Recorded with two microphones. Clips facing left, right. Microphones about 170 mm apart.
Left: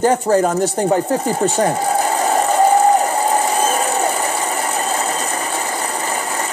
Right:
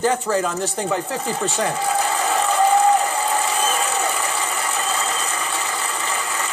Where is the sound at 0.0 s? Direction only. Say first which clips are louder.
Left 6 dB; 45° left (ahead or behind).